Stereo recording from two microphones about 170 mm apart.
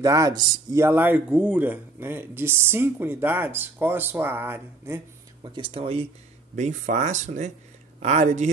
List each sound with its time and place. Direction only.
0.0 s speech: 20° right (ahead or behind)
5.4 s speech: 25° right (ahead or behind); by 8.5 s 45° right (ahead or behind)